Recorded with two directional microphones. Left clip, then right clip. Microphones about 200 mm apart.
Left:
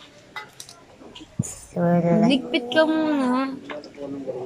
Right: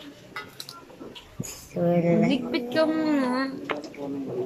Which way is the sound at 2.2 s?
5° left (ahead or behind).